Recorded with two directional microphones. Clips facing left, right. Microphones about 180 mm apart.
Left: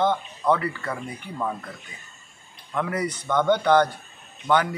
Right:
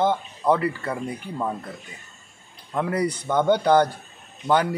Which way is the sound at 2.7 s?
30° right (ahead or behind).